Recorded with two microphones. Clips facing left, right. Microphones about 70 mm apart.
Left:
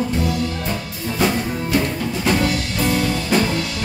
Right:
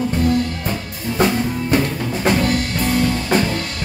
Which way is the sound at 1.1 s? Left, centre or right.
Right.